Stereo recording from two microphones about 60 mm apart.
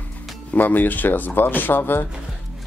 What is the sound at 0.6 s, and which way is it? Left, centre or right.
Speech, left.